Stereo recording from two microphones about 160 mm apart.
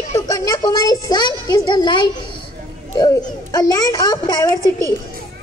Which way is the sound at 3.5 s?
25° left (ahead or behind).